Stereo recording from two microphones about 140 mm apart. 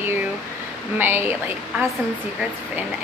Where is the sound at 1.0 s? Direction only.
15° right (ahead or behind).